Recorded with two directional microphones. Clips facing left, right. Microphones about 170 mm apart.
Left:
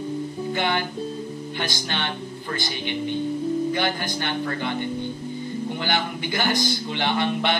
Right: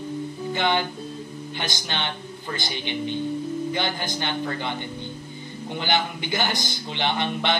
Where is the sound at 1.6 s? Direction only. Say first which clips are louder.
Left 1 dB; 20° right (ahead or behind).